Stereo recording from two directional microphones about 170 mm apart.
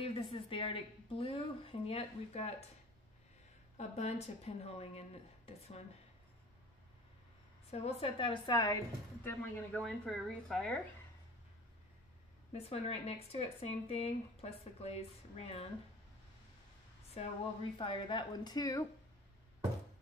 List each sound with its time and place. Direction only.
0.0 s speech: 30° left (ahead or behind)
3.7 s speech: 40° left (ahead or behind)
7.7 s speech: 35° left (ahead or behind)
9.2 s a woman's voice: 10° left (ahead or behind)
12.5 s speech: 35° left (ahead or behind)
17.2 s a woman's voice: 35° left (ahead or behind); by 18.9 s 20° left (ahead or behind)